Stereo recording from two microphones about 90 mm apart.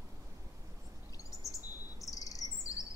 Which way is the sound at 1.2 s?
40° left (ahead or behind).